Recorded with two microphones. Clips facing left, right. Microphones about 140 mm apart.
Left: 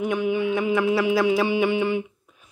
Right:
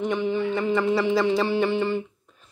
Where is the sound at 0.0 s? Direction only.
10° left (ahead or behind).